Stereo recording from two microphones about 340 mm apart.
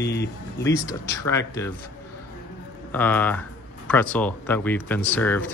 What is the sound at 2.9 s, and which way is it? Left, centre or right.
Speech, centre.